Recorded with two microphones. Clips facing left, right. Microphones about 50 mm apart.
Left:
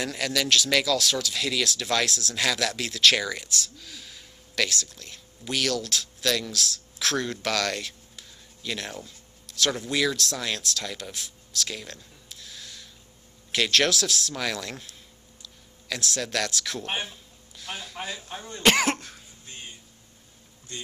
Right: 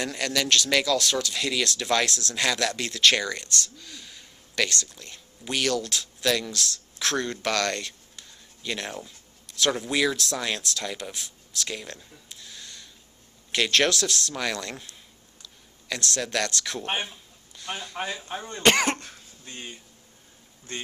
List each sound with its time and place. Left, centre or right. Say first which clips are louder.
0.0 s speech: even; centre
20.7 s speech: right 4 dB; right